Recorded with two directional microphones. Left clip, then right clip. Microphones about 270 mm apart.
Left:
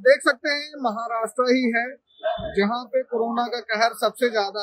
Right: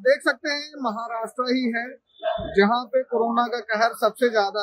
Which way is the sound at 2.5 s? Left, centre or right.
Centre.